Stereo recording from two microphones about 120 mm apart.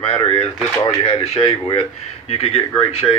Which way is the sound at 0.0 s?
60° left (ahead or behind).